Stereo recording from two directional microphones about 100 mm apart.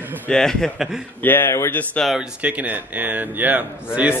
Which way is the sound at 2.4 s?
15° right (ahead or behind).